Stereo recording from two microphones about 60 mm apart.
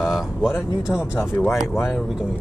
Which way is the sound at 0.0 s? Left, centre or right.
Centre.